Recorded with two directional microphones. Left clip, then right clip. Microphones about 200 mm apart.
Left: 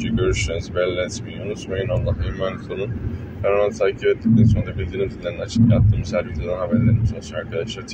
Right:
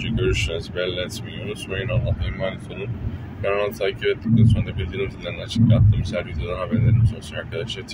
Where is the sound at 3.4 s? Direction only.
20° right (ahead or behind).